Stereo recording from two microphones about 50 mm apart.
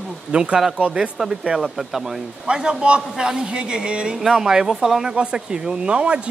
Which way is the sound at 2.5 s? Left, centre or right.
Centre.